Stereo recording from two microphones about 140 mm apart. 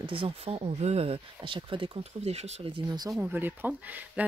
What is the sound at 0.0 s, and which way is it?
Speech, 40° right (ahead or behind).